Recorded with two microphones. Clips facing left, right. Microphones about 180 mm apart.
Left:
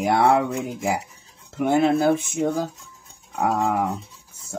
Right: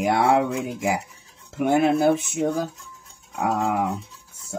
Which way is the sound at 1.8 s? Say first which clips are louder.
Even; 15° right (ahead or behind).